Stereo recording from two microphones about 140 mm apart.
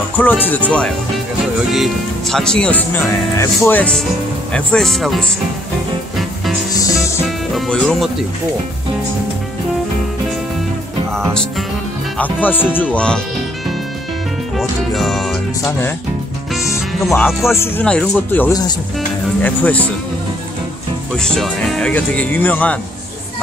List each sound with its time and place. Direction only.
0.2 s speech: 10° left (ahead or behind)
3.1 s speech: 20° left (ahead or behind); by 5.3 s centre (ahead or behind)
7.5 s speech: centre (ahead or behind)
12.2 s speech: 10° left (ahead or behind)
14.6 s speech: centre (ahead or behind)
17.5 s speech: 20° left (ahead or behind)
17.8 s speech: 5° left (ahead or behind)
21.2 s speech: 5° left (ahead or behind)